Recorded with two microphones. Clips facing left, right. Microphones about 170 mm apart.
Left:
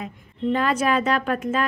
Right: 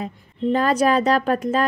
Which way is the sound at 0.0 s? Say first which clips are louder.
Right 2 dB; 35° right (ahead or behind).